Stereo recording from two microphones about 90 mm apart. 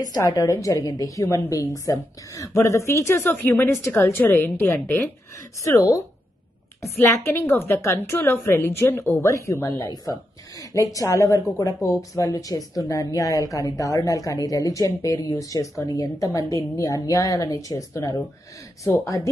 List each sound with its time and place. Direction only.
0.0 s speech: 45° left (ahead or behind)
3.3 s a woman's voice: 20° left (ahead or behind)
6.8 s a woman's voice: 30° left (ahead or behind)